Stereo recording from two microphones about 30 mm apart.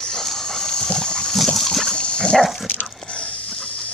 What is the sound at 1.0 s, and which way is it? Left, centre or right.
Pig, left.